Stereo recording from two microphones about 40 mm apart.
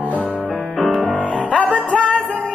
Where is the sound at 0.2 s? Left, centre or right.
Left.